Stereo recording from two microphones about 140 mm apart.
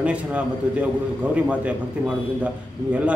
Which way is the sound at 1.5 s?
10° right (ahead or behind).